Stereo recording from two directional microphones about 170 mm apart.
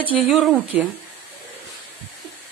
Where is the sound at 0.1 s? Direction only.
5° right (ahead or behind).